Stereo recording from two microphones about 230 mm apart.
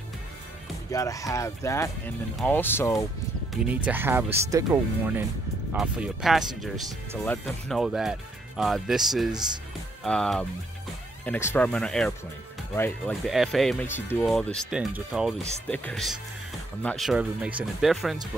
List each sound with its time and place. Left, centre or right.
0.9 s speech: centre
3.6 s speech: centre